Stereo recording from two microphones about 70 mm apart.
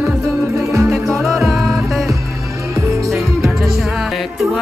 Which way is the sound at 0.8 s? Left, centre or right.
Centre.